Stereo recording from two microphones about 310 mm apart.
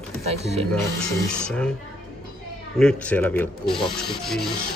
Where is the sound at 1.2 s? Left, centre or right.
Centre.